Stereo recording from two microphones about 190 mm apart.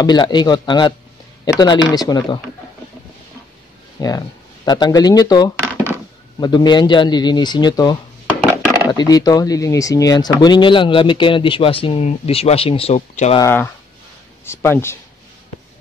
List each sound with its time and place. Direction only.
0.0 s speech: 20° left (ahead or behind)
4.0 s speech: 20° left (ahead or behind)
13.4 s speech: 10° left (ahead or behind)